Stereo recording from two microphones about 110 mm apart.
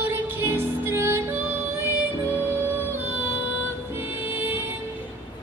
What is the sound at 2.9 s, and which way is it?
Emergency vehicle, 20° right (ahead or behind).